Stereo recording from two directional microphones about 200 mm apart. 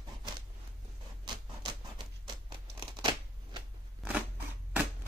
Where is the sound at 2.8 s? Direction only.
20° right (ahead or behind).